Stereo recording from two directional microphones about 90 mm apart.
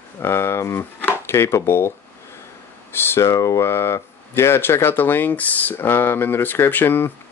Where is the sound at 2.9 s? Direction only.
30° left (ahead or behind).